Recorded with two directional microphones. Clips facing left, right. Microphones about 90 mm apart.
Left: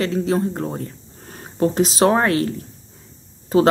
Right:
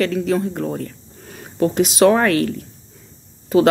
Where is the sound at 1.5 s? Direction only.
35° left (ahead or behind).